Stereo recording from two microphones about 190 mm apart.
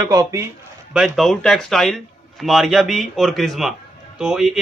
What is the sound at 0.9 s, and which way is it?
Speech, centre (ahead or behind).